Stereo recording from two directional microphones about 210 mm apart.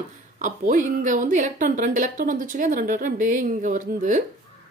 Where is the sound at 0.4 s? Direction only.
35° right (ahead or behind).